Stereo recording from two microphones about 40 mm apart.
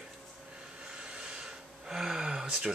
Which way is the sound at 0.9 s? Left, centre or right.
Right.